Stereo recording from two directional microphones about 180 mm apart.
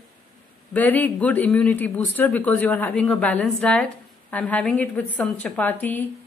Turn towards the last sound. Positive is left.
turn(degrees=10)  # may be behind; listen again after turning